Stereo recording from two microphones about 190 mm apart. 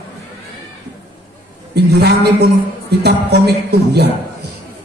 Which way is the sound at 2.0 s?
55° right (ahead or behind).